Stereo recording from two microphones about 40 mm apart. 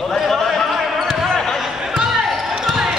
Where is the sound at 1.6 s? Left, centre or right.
Centre.